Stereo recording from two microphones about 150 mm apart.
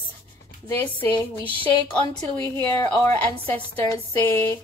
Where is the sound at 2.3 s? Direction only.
15° left (ahead or behind).